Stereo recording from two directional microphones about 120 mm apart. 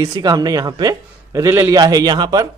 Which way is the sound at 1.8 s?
35° right (ahead or behind).